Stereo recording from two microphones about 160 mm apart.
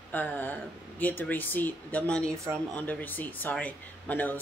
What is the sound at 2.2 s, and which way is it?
Speech, 20° right (ahead or behind).